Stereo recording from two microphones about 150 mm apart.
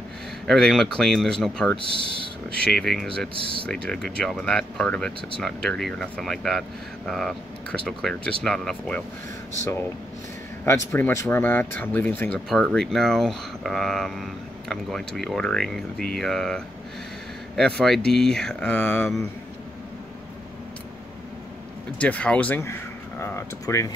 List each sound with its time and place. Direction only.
0.5 s speech: 5° left (ahead or behind)
10.6 s speech: 15° left (ahead or behind)
22.0 s speech: 5° left (ahead or behind)